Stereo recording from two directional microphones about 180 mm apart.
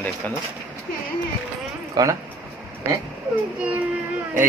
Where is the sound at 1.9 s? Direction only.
20° right (ahead or behind).